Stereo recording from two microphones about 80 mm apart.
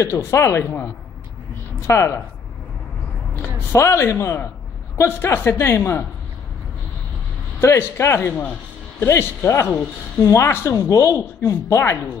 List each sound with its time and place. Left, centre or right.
0.0 s a woman's voice: left
3.7 s a woman's voice: left
7.6 s a woman's voice: left